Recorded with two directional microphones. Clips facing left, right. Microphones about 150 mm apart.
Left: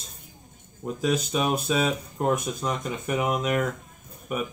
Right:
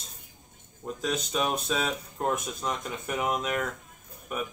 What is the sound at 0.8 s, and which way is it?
Speech, 5° left (ahead or behind).